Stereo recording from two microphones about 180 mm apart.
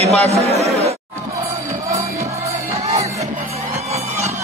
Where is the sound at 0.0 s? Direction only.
35° right (ahead or behind).